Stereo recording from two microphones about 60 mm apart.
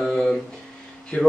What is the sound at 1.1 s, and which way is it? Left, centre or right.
Speech, left.